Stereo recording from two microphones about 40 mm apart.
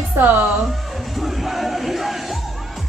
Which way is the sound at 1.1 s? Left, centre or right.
Centre.